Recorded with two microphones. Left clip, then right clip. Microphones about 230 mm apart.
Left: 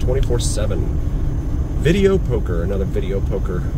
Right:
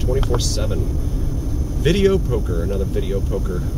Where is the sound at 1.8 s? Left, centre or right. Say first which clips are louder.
Left 1 dB; centre.